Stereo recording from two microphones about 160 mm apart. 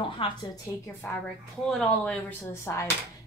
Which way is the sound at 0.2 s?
35° left (ahead or behind).